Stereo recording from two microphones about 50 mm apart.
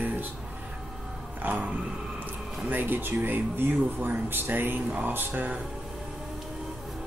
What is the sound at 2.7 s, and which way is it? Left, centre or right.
Speech, right.